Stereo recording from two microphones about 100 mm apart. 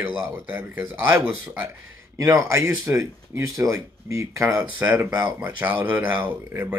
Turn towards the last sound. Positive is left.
turn(degrees=-15)  # may be behind; listen again after turning